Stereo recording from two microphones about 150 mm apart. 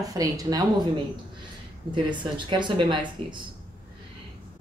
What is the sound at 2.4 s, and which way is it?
Speech, 30° right (ahead or behind).